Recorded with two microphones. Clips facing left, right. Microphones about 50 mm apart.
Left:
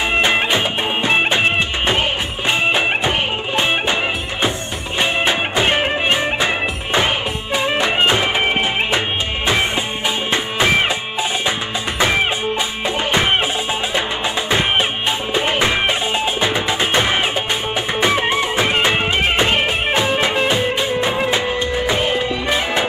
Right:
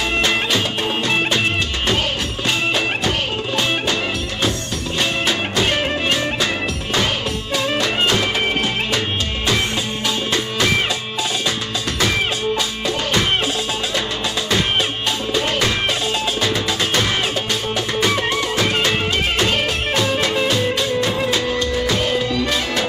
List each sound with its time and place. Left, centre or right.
0.1 s music: left
12.0 s music: left
15.3 s music: left